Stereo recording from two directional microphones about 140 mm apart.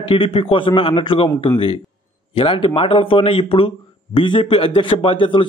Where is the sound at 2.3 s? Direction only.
40° left (ahead or behind).